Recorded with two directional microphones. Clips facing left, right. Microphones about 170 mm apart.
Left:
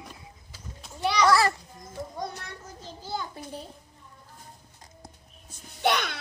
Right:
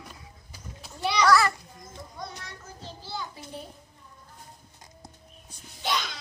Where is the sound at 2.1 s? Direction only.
45° left (ahead or behind).